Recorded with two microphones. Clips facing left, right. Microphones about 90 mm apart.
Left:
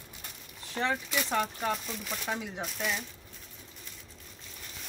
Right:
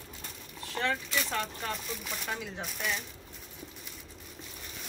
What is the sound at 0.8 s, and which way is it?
Speech, 15° left (ahead or behind).